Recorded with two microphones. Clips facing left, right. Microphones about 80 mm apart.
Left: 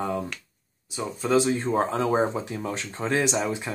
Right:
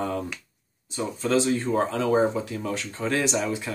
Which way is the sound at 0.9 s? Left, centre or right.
Centre.